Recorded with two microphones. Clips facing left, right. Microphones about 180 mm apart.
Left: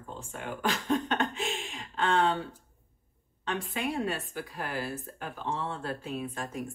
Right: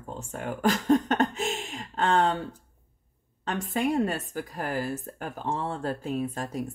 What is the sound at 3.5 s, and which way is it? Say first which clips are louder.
Speech: right 5 dB; 40° right (ahead or behind).